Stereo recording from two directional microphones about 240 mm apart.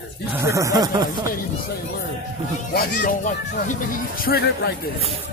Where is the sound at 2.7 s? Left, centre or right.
Left.